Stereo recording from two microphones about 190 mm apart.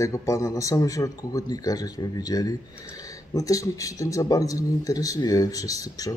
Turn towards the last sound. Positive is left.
turn(degrees=20)  # may be behind; listen again after turning